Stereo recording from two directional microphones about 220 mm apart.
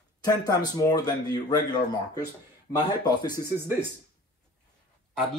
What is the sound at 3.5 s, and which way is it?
Speech, 10° right (ahead or behind).